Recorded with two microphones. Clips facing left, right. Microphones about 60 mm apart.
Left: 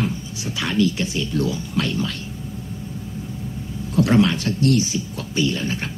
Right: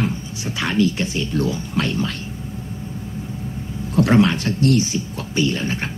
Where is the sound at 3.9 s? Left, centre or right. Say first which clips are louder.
Right 1 dB; right.